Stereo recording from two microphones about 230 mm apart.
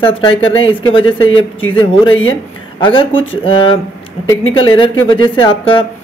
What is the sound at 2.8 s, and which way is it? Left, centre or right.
Speech, left.